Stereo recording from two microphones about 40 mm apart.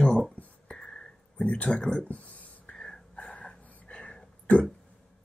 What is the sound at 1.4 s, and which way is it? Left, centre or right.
Speech, left.